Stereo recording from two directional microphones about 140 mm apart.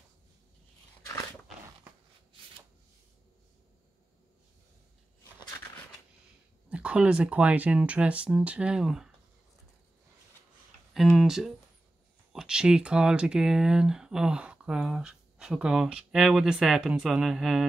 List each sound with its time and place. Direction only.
6.7 s speech: 10° right (ahead or behind)
10.9 s speech: centre (ahead or behind)